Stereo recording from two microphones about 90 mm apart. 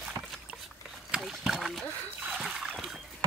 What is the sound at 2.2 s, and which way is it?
Splash, 5° right (ahead or behind).